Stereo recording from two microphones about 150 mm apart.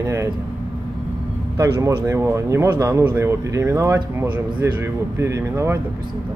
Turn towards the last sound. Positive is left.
turn(degrees=-20)  # may be behind; listen again after turning